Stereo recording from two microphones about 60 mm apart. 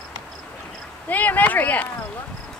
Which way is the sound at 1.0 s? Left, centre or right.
Left.